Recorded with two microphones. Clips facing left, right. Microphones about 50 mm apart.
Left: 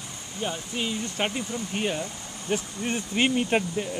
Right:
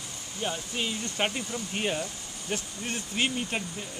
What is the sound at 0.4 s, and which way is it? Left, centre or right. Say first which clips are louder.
Speech: left 2 dB; centre.